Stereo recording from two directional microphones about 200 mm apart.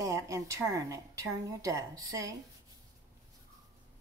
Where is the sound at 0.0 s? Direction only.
15° right (ahead or behind).